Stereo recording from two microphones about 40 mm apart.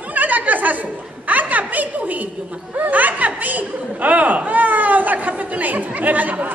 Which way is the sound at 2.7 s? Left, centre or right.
Right.